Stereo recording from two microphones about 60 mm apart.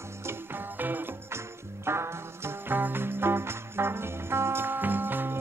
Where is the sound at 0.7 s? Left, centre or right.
Right.